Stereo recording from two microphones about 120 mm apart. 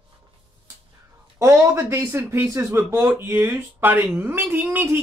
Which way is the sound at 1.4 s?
20° right (ahead or behind).